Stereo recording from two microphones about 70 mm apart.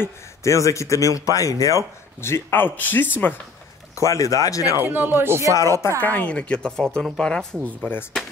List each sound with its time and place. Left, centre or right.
0.0 s speech: left
2.2 s speech: left
3.9 s speech: left
4.7 s speech: right
5.5 s speech: left
5.9 s a woman's voice: left